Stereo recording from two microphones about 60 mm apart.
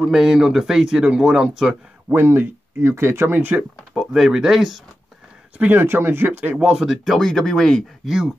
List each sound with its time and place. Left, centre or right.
0.1 s a man's voice: centre
2.1 s speech: right
3.3 s speech: right
3.9 s speech: centre
5.6 s speech: right
6.5 s speech: centre
6.8 s speech: centre
8.0 s speech: centre